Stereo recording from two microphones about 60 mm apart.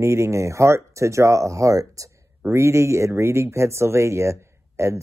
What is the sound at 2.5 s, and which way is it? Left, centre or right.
Speech, right.